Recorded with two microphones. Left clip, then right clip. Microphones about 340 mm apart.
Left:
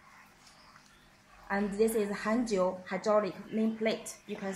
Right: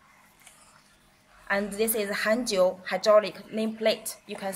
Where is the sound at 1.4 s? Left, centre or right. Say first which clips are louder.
Right 3 dB; right.